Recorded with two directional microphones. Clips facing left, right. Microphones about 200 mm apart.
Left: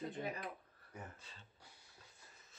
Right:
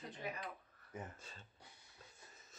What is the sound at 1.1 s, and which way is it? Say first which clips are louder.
Speech: right 3 dB; 45° right (ahead or behind).